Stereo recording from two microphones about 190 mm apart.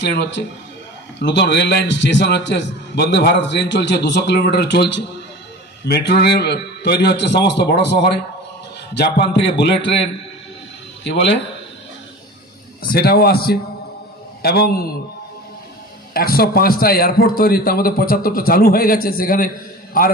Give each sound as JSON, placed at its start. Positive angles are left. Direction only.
{"t": 0.0, "sound": "a man's voice", "side_deg": 65}
{"t": 11.1, "sound": "speech", "side_deg": 65}
{"t": 12.8, "sound": "a man's voice", "side_deg": 55}
{"t": 16.1, "sound": "a man's voice", "side_deg": 50}